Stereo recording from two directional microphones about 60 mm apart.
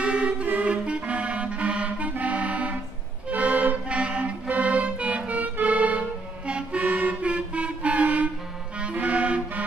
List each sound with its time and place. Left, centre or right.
0.0 s music: centre
6.8 s toot: right
8.7 s music: right